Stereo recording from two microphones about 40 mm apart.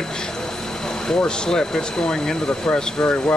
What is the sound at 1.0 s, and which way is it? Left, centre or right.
Speech, centre.